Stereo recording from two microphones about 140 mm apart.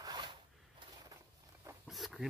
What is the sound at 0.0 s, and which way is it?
Zipper, 30° right (ahead or behind).